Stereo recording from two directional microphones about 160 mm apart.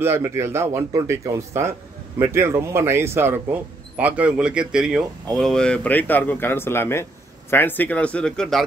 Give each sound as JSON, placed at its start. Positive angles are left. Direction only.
{"t": 0.0, "sound": "speech", "side_deg": -15}